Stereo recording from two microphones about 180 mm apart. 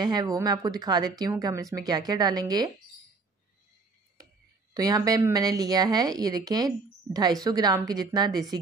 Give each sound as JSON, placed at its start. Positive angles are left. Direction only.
{"t": 0.0, "sound": "a woman's voice", "side_deg": -20}
{"t": 4.7, "sound": "a woman's voice", "side_deg": -20}